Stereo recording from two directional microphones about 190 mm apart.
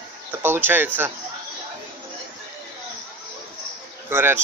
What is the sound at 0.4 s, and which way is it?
Speech, 10° right (ahead or behind).